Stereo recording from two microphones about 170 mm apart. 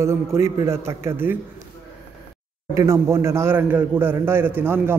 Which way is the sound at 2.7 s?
20° right (ahead or behind).